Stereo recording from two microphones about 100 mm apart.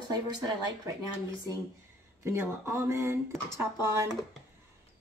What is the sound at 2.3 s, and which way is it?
A woman's voice, 25° right (ahead or behind).